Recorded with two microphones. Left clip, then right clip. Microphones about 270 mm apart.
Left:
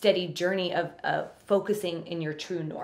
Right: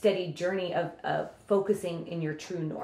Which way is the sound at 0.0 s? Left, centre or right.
Left.